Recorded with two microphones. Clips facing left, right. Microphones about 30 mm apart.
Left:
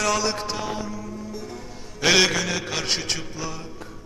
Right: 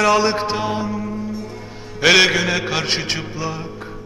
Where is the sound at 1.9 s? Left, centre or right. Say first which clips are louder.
Right 6 dB; right.